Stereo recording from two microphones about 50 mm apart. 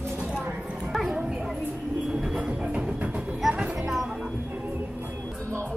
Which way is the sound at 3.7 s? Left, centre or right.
Centre.